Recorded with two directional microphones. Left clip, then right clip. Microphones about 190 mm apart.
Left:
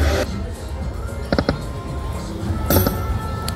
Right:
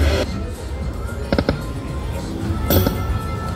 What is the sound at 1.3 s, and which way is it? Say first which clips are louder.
Music: even; centre (ahead or behind).